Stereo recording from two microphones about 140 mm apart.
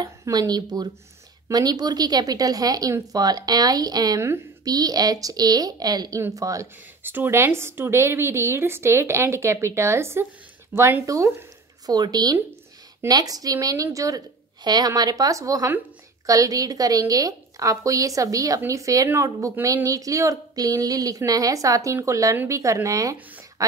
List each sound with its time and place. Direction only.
0.0 s speech: 30° right (ahead or behind)